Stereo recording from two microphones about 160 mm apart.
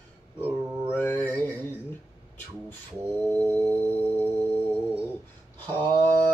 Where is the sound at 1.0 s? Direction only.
10° left (ahead or behind).